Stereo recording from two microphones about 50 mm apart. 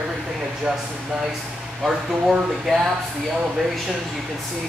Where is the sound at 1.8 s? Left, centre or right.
Centre.